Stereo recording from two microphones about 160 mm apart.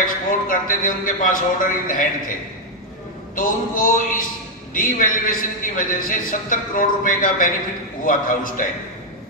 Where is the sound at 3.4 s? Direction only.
60° left (ahead or behind).